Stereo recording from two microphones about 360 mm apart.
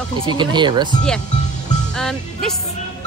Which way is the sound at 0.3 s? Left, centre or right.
Centre.